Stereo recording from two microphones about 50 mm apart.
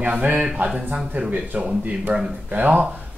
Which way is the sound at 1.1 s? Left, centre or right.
Right.